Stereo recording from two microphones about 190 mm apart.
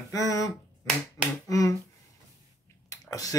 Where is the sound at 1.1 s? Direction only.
15° left (ahead or behind).